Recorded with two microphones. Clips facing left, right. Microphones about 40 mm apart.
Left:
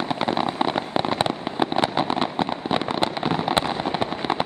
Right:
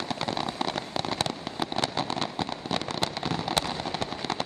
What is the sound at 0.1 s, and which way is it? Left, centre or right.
Fireworks, left.